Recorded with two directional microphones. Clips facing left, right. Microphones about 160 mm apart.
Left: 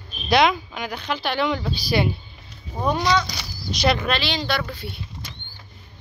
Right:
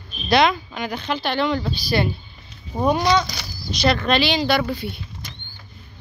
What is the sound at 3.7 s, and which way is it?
Speech, 15° left (ahead or behind).